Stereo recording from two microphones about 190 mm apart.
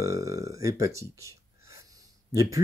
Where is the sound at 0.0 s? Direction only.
15° right (ahead or behind).